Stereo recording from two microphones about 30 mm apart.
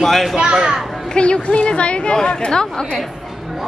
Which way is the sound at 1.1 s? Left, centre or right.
Left.